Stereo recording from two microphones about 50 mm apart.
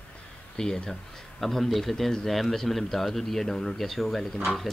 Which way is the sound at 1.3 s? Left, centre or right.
Centre.